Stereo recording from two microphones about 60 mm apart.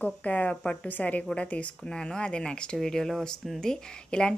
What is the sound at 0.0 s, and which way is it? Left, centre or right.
Speech, left.